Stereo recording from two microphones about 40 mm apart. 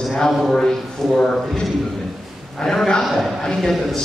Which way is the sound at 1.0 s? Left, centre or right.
Centre.